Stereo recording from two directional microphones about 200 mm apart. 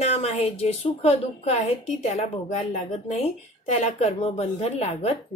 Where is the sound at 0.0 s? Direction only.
35° left (ahead or behind).